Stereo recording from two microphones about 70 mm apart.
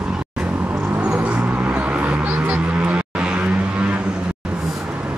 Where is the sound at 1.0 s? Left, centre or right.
Centre.